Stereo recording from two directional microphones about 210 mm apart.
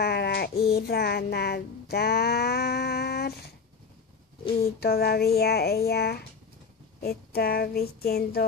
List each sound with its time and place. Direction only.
0.0 s a sound: 50° left (ahead or behind)
0.7 s music: 45° left (ahead or behind)
4.6 s speech: 45° left (ahead or behind)